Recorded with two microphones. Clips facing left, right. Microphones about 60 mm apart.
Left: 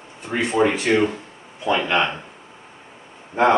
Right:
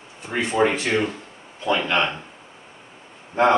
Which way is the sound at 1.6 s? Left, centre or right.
Centre.